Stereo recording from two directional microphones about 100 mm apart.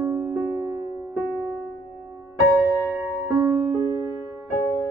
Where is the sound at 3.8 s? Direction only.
35° right (ahead or behind).